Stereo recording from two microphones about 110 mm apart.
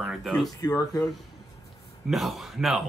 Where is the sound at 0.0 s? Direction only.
5° right (ahead or behind).